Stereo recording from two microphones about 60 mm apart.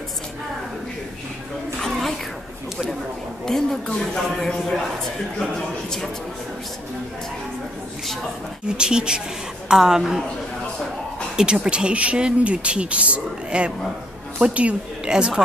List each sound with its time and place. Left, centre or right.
1.8 s a sound: centre
3.4 s a woman's voice: centre
4.5 s a woman's voice: centre
8.6 s speech: centre
11.3 s speech: centre